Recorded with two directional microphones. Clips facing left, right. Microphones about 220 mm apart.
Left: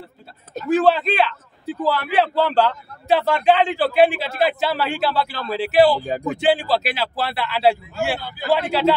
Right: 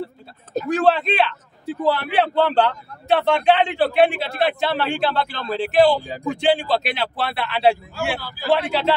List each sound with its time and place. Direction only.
0.7 s a man's voice: centre (ahead or behind)
8.2 s a man's voice: 20° left (ahead or behind)
8.5 s a man's voice: centre (ahead or behind)